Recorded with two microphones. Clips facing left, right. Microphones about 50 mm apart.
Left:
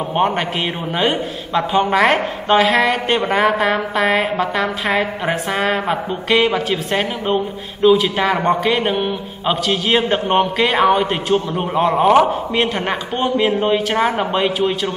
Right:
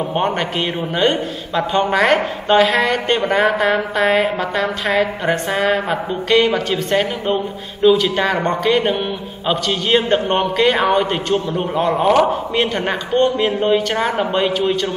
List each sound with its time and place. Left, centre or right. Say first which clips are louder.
0.9 s a woman's voice: right 2 dB; centre